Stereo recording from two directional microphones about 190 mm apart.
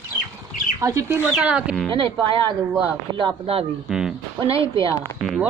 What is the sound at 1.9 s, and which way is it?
Speech, 25° right (ahead or behind).